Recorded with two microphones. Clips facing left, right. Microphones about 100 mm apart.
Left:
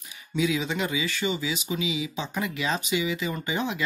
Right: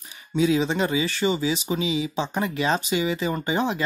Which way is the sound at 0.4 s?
35° right (ahead or behind).